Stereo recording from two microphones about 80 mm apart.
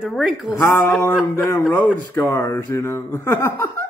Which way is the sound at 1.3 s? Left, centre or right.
Left.